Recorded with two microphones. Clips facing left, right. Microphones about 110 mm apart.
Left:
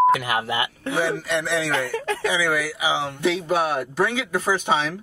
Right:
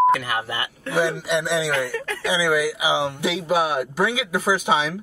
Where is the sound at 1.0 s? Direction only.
15° right (ahead or behind).